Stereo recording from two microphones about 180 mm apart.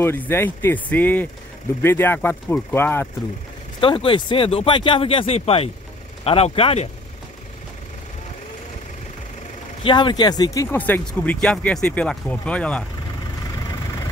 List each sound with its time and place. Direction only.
0.0 s speech: 10° left (ahead or behind)
3.8 s speech: 30° left (ahead or behind)
9.8 s speech: 25° left (ahead or behind); by 12.8 s 5° left (ahead or behind)